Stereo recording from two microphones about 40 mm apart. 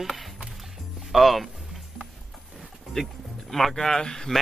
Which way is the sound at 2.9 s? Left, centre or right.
Centre.